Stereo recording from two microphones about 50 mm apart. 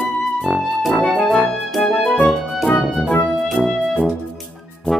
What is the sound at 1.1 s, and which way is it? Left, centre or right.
Music, left.